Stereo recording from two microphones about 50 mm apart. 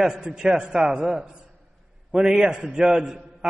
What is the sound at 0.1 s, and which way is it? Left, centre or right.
A man's voice, centre.